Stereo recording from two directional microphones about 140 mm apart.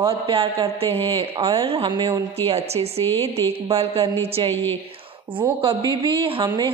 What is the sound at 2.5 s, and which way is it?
Speech, 45° right (ahead or behind).